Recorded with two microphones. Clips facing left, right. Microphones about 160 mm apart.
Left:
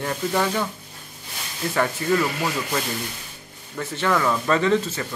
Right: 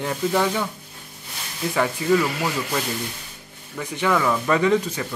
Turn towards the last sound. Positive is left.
turn(degrees=-15)  # may be behind; listen again after turning